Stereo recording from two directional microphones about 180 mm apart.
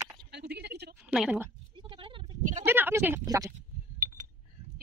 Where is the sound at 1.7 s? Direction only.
30° right (ahead or behind).